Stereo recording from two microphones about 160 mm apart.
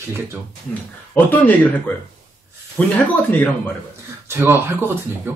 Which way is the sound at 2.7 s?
10° left (ahead or behind).